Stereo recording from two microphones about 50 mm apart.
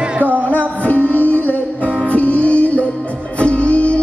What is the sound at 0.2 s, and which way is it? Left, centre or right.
Music, right.